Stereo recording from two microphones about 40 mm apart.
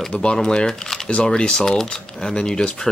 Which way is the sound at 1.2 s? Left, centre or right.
Left.